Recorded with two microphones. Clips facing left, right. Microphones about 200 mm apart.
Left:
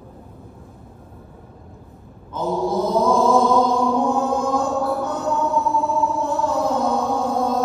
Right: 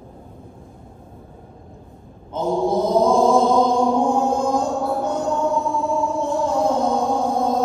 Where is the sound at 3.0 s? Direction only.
30° right (ahead or behind).